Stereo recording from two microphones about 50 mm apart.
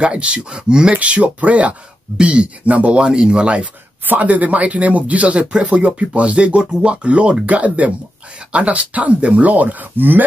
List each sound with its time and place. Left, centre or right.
0.0 s speech: right
3.0 s speech: centre
4.0 s speech: right